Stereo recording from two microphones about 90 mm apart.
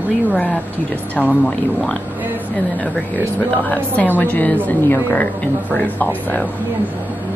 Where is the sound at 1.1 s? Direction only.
15° left (ahead or behind).